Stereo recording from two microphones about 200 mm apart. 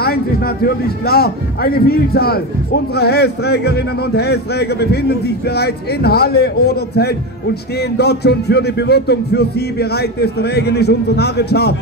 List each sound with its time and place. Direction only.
1.0 s a man's voice: 50° left (ahead or behind)